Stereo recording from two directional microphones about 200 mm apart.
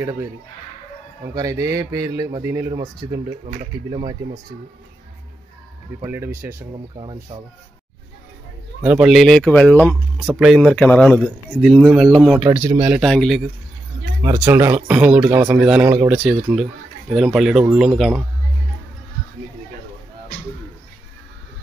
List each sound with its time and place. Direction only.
0.0 s a man's voice: 15° right (ahead or behind)
1.3 s a man's voice: 15° right (ahead or behind)
5.9 s a man's voice: 10° right (ahead or behind)
7.0 s speech: 25° right (ahead or behind)
8.8 s speech: 5° right (ahead or behind)
12.4 s a man's voice: 15° right (ahead or behind)
13.0 s speech: centre (ahead or behind)
14.2 s a man's voice: 10° right (ahead or behind)